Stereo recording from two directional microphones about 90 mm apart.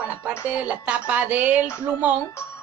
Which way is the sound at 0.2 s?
15° right (ahead or behind).